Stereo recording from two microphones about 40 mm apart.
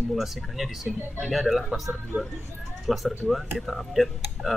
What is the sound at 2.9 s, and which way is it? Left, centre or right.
Speech, centre.